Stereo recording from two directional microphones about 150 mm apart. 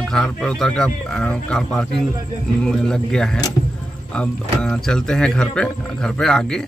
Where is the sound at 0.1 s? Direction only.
5° left (ahead or behind).